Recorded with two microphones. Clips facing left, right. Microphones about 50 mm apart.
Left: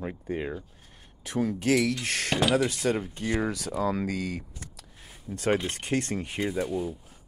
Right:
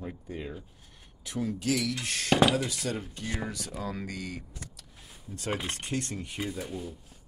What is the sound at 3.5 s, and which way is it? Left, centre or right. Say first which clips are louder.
Speech: left 8 dB; left.